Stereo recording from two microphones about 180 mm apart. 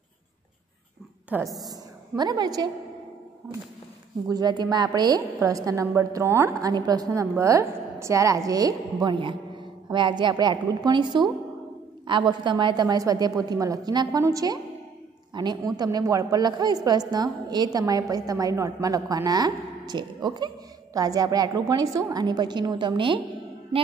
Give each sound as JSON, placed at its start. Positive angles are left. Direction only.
{"t": 1.3, "sound": "a woman's voice", "side_deg": -15}
{"t": 4.3, "sound": "a woman's voice", "side_deg": -25}